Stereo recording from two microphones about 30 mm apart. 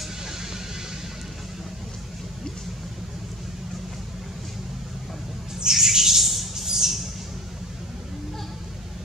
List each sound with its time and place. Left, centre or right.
5.7 s squawk: centre